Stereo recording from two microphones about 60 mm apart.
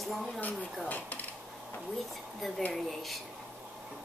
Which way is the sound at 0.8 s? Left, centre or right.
Left.